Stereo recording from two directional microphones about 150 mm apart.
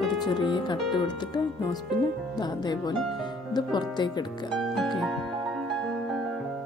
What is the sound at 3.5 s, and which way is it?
Speech, 30° left (ahead or behind).